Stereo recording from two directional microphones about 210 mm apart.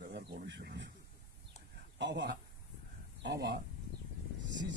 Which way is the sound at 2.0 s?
55° right (ahead or behind).